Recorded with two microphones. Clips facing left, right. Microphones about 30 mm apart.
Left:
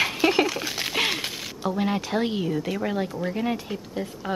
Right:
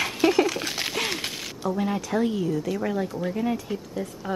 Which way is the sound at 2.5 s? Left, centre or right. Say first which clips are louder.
Even; left.